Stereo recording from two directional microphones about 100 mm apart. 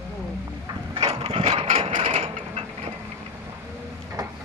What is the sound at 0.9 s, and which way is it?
Mechanisms, 80° right.